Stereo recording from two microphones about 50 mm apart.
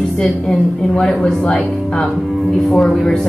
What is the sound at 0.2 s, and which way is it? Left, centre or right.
A woman's voice, centre.